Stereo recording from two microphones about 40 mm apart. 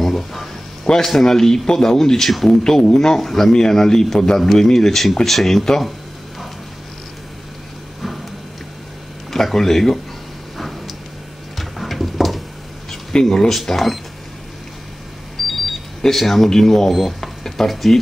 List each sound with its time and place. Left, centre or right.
0.0 s a sound: centre
0.8 s speech: centre
3.2 s speech: centre
3.5 s speech: centre
9.3 s speech: centre
11.5 s a sound: centre
13.1 s speech: centre
13.5 s speech: centre
15.4 s a sound: centre
16.0 s speech: centre